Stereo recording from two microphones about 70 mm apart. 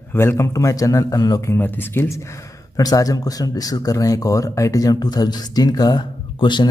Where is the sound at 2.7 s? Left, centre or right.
Left.